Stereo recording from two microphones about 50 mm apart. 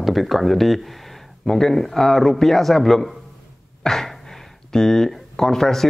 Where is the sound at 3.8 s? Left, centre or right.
Centre.